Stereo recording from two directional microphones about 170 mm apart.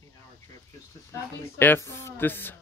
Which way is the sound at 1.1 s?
15° left (ahead or behind).